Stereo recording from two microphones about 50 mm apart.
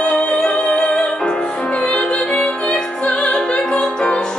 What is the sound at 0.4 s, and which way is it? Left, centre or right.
Music, centre.